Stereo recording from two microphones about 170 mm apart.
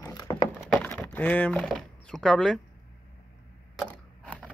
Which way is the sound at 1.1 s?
10° left (ahead or behind).